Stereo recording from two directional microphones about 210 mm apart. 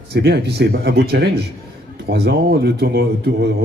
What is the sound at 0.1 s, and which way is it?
A man's voice, 50° right (ahead or behind).